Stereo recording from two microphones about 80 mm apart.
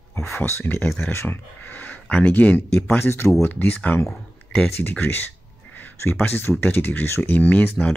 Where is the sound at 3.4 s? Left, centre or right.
Left.